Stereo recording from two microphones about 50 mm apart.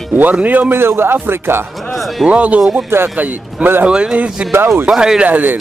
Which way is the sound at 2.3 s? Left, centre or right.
Right.